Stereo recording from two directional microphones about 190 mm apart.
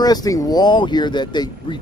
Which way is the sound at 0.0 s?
20° left (ahead or behind).